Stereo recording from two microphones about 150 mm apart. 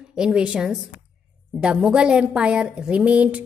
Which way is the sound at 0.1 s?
5° right (ahead or behind).